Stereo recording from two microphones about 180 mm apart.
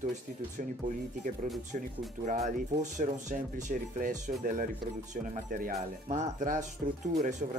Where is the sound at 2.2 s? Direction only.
40° right (ahead or behind).